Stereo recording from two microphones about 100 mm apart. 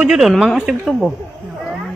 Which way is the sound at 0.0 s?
5° right (ahead or behind).